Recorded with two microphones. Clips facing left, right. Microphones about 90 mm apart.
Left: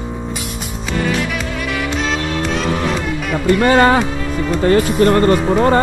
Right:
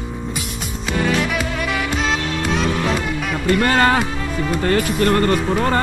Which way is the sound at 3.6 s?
15° left (ahead or behind).